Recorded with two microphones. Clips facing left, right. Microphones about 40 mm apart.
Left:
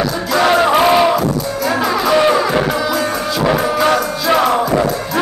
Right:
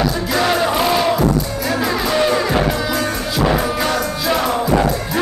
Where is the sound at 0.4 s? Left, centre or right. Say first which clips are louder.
Left 6 dB; centre.